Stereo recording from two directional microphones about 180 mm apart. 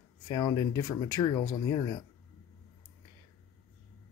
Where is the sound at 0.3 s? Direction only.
25° left (ahead or behind).